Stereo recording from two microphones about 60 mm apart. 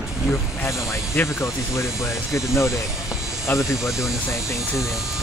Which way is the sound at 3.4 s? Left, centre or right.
Left.